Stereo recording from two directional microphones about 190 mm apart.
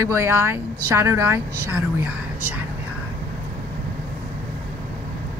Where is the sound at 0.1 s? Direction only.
15° right (ahead or behind).